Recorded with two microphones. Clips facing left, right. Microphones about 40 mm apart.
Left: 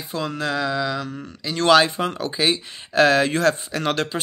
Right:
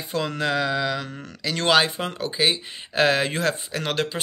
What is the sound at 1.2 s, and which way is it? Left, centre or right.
Speech, right.